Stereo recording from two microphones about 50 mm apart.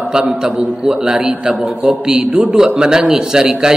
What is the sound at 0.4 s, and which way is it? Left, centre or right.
A man's voice, centre.